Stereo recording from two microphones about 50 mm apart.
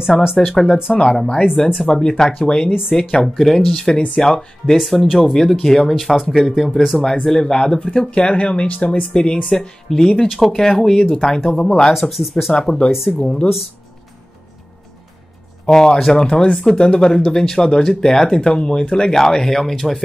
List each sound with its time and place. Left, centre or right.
0.2 s speech: centre
0.9 s speech: centre
3.9 s speech: left; by 7.0 s centre
7.0 s speech: centre
8.6 s speech: left
9.1 s speech: centre
9.6 s speech: centre
11.9 s speech: centre
12.5 s speech: centre
15.6 s speech: centre
16.3 s speech: left; by 20.0 s centre